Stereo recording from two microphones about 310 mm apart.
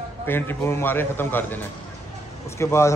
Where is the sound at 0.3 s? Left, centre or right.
Centre.